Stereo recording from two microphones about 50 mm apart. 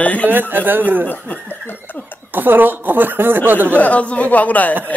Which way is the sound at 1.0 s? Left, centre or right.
Left.